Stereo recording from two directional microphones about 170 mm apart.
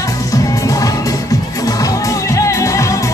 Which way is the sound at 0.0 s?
20° left (ahead or behind).